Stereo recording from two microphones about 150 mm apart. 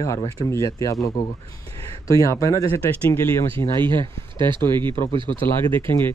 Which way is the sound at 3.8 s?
30° right (ahead or behind).